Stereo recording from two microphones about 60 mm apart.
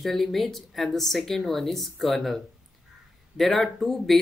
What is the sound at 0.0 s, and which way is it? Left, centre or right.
Speech, centre.